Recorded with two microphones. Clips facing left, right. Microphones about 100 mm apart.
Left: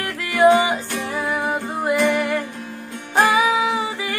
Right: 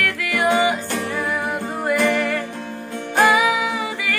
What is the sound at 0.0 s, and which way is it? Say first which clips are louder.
Music: left 5 dB; 25° left (ahead or behind).